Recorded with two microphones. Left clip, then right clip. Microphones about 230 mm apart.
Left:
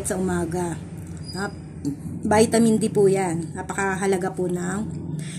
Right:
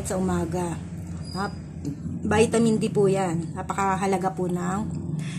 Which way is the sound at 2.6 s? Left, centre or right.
Centre.